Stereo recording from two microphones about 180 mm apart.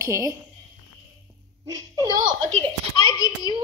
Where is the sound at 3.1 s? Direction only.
25° left (ahead or behind).